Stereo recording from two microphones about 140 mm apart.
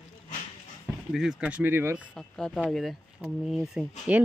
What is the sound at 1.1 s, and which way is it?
Speech, 5° right (ahead or behind).